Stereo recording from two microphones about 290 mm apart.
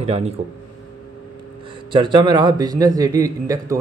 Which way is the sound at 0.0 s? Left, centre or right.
Right.